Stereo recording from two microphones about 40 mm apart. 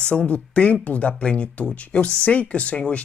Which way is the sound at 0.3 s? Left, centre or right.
Left.